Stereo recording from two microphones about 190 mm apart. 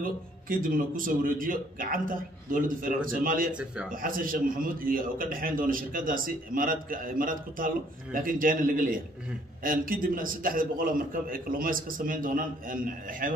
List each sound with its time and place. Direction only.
0.0 s a man's voice: 45° right (ahead or behind)
3.5 s a man's voice: 5° right (ahead or behind)
3.9 s a man's voice: 45° right (ahead or behind)